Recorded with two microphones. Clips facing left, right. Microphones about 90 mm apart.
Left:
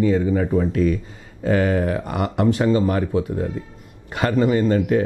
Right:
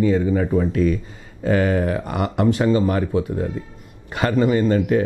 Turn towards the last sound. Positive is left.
turn(degrees=-15)  # may be behind; listen again after turning